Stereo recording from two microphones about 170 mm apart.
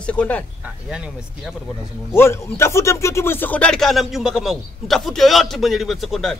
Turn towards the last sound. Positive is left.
turn(degrees=0)  # may be behind; listen again after turning